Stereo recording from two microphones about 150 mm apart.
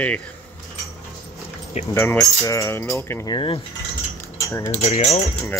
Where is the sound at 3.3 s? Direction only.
30° left (ahead or behind).